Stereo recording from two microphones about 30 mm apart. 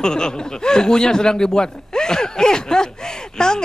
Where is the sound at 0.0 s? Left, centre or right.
Left.